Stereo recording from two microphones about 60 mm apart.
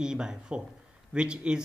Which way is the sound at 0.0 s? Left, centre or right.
Centre.